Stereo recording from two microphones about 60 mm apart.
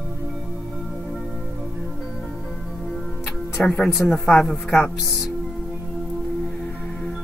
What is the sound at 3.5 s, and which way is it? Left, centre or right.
Speech, left.